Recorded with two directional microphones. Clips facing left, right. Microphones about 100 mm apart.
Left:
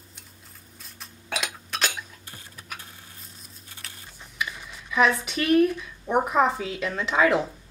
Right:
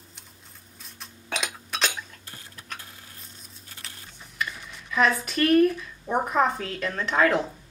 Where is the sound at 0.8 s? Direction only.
Centre (ahead or behind).